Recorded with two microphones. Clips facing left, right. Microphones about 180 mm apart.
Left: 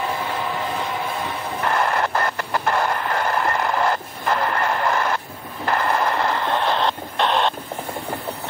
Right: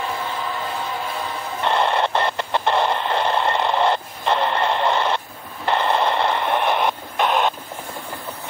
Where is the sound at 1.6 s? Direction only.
25° right (ahead or behind).